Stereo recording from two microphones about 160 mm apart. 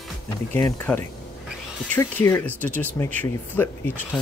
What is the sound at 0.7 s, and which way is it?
Speech, 15° left (ahead or behind).